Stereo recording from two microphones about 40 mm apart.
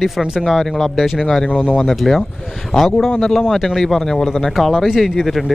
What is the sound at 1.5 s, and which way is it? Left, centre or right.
Speech, left.